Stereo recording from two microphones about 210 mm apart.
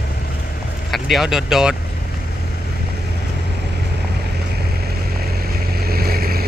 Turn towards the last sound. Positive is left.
turn(degrees=-45)  # may be behind; listen again after turning